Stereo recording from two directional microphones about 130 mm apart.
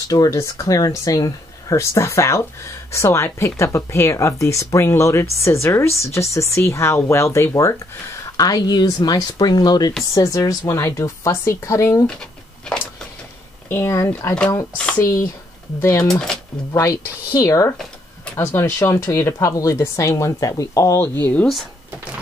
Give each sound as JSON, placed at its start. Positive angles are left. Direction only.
{"t": 0.1, "sound": "speech", "side_deg": 25}
{"t": 13.7, "sound": "speech", "side_deg": 20}
{"t": 16.0, "sound": "speech", "side_deg": 5}
{"t": 16.7, "sound": "speech", "side_deg": 25}